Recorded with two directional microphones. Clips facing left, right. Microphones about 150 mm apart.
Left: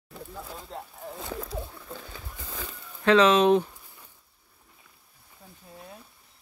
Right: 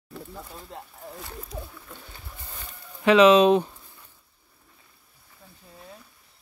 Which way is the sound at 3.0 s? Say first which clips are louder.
Right 4 dB; 10° right (ahead or behind).